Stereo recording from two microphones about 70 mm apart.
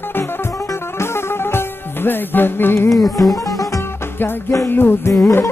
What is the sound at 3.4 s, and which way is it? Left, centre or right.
Music, left.